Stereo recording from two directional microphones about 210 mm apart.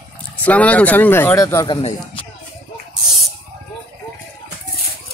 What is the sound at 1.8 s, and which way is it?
Speech, 30° left (ahead or behind).